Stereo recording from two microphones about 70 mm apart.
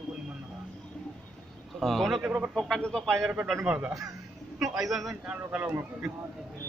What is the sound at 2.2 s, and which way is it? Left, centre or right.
Speech, centre.